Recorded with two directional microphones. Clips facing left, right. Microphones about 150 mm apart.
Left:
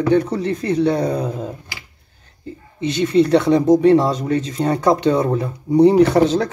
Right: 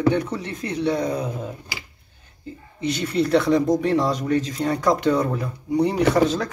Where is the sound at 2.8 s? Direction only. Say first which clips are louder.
Left 7 dB; 25° left (ahead or behind).